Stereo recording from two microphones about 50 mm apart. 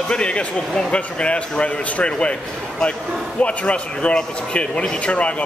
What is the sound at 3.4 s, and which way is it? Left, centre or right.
Speech, left.